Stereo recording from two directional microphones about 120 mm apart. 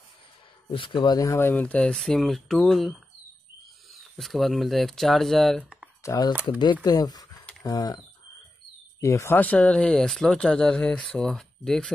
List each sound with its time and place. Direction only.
0.7 s speech: 45° left (ahead or behind)
1.5 s speech: 15° left (ahead or behind)
4.2 s speech: centre (ahead or behind)
6.0 s speech: 30° left (ahead or behind)
9.0 s speech: 25° left (ahead or behind); by 11.9 s 5° left (ahead or behind)